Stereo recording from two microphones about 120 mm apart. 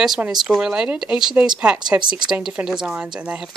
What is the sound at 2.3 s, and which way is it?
Speech, 5° right (ahead or behind).